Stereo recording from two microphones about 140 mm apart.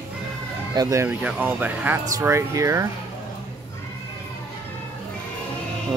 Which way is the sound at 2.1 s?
25° right (ahead or behind).